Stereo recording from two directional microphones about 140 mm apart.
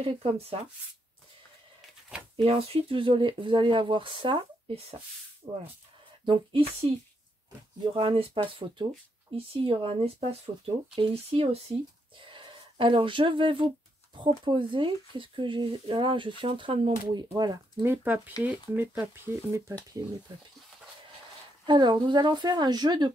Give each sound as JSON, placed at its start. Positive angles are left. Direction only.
{"t": 0.0, "sound": "speech", "side_deg": -45}
{"t": 2.0, "sound": "shuffling cards", "side_deg": -5}
{"t": 2.4, "sound": "speech", "side_deg": -45}
{"t": 7.8, "sound": "speech", "side_deg": -35}
{"t": 17.8, "sound": "speech", "side_deg": -10}
{"t": 21.6, "sound": "speech", "side_deg": -30}